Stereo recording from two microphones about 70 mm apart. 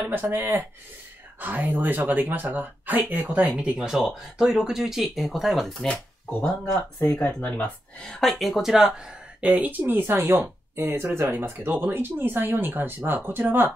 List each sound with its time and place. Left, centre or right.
0.1 s speech: right
3.9 s speech: centre
7.0 s speech: left
8.0 s speech: centre; by 13.7 s right